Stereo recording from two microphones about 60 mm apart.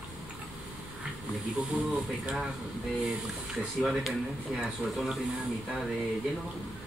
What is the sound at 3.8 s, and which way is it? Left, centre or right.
Speech, centre.